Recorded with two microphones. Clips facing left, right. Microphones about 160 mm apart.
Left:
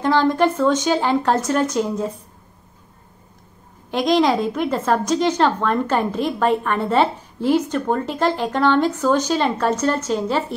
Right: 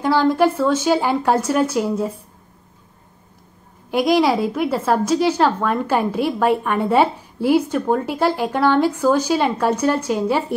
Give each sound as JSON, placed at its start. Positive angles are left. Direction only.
{"t": 0.0, "sound": "a woman's voice", "side_deg": -5}
{"t": 3.9, "sound": "a woman's voice", "side_deg": -10}